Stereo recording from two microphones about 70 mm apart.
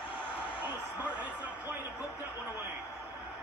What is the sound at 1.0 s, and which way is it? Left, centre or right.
Speech, centre.